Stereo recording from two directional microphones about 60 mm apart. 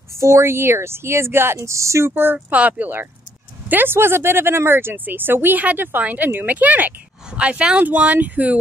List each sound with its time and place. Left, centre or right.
0.1 s speech: right
1.6 s speech: right
2.5 s speech: right